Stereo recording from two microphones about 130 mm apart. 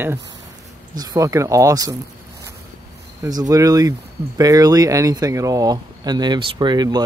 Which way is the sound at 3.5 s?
30° right (ahead or behind).